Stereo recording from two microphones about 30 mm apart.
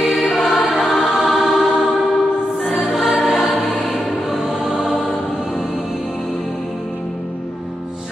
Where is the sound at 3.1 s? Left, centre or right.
Centre.